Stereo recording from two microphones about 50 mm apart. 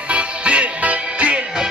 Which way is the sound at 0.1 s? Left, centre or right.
Right.